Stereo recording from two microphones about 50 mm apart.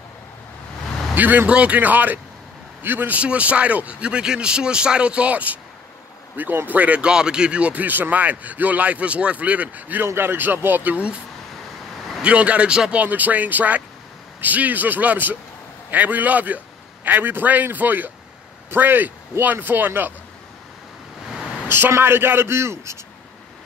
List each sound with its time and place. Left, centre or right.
1.1 s a man's voice: right
1.5 s a man's voice: right
1.8 s a man's voice: right
3.2 s a man's voice: right
7.1 s a man's voice: centre; by 10.0 s right
10.1 s a man's voice: right
12.2 s a man's voice: right
13.0 s a man's voice: right
21.6 s a man's voice: right